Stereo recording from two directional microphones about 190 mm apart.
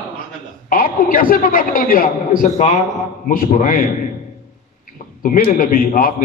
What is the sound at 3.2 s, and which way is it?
Speech, 45° left (ahead or behind).